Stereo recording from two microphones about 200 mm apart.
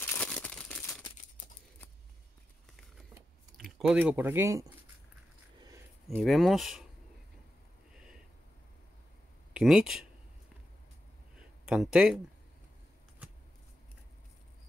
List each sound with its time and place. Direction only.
0.0 s crumpling: 10° left (ahead or behind)
3.5 s speech: centre (ahead or behind)
5.6 s a sound: 15° right (ahead or behind)
6.0 s speech: centre (ahead or behind)
9.5 s speech: 5° right (ahead or behind)
11.3 s a sound: 5° right (ahead or behind)